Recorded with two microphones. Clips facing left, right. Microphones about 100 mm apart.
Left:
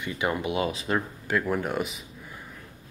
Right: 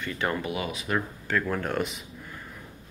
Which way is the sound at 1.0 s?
15° left (ahead or behind).